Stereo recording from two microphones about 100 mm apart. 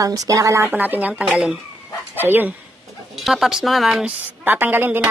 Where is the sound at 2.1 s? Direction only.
20° right (ahead or behind).